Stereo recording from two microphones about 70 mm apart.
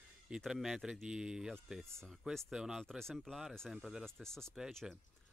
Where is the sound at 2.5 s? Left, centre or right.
Centre.